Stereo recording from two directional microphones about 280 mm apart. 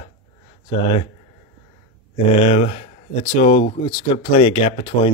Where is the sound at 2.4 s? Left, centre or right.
Left.